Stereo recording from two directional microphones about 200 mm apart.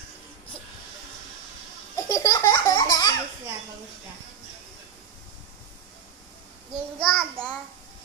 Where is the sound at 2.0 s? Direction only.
15° left (ahead or behind).